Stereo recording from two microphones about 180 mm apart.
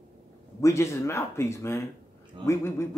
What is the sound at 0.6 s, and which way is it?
Speech, 15° left (ahead or behind).